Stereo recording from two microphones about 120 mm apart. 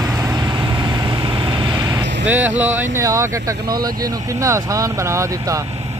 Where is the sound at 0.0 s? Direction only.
30° right (ahead or behind).